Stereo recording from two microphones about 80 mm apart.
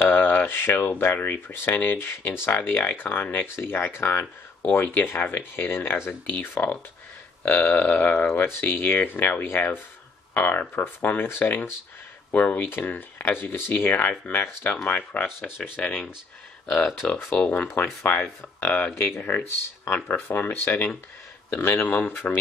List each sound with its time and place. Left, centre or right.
0.0 s speech: left
2.0 s speech: left